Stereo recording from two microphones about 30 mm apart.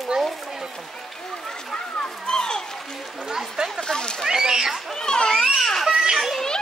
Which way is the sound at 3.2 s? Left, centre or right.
Centre.